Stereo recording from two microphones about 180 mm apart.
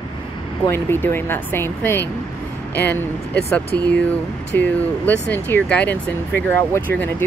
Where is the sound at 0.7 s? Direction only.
10° left (ahead or behind).